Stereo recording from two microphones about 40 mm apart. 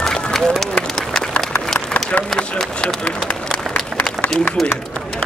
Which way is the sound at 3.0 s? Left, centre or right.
Left.